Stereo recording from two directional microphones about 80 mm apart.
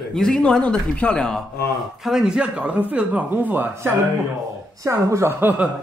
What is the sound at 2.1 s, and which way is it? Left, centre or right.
A woman's voice, centre.